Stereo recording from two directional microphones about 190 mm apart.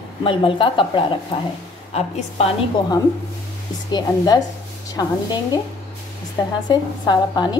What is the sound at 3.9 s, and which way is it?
A woman's voice, 20° left (ahead or behind).